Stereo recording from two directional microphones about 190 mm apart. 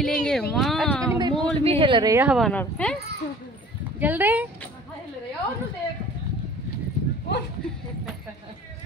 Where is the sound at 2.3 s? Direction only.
5° left (ahead or behind).